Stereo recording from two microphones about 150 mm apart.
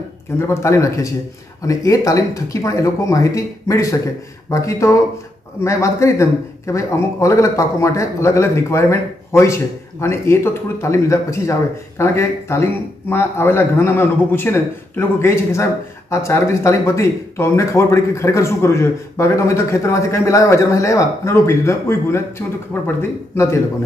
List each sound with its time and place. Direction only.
0.4 s a man's voice: 20° left (ahead or behind)